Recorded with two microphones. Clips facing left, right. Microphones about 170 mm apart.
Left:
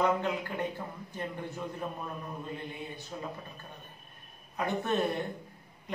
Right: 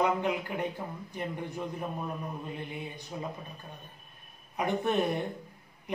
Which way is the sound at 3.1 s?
10° right (ahead or behind).